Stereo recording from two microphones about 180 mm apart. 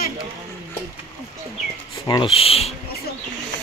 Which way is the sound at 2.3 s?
35° left (ahead or behind).